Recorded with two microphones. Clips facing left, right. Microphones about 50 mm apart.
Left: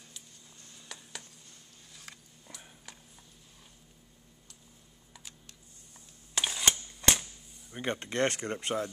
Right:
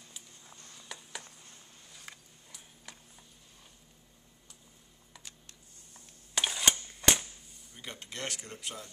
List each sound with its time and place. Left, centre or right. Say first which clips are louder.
0.8 s a sound: right 1 dB; centre
2.1 s biting: right 1 dB; centre
5.1 s computer keyboard: even; centre
6.3 s camera: even; centre
7.7 s speech: left 11 dB; left